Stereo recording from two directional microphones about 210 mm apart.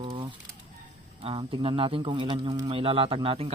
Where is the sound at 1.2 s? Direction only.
25° right (ahead or behind).